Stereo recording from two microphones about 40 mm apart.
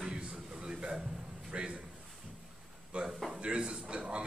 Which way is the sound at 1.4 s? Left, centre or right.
Right.